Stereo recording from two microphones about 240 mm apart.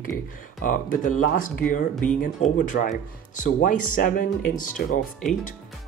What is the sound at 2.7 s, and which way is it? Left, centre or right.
Speech, left.